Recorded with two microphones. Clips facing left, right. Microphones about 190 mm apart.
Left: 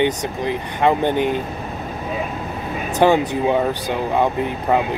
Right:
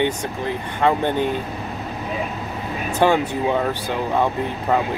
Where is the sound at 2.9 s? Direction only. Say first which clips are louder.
Left 2 dB; 15° left (ahead or behind).